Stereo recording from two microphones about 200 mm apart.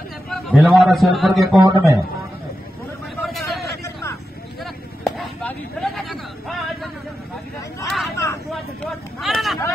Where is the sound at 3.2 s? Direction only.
Centre (ahead or behind).